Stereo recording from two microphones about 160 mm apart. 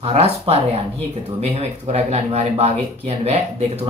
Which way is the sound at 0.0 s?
40° right (ahead or behind).